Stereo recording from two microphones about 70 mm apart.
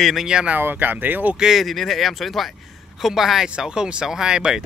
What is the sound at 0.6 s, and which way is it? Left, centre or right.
Speech, right.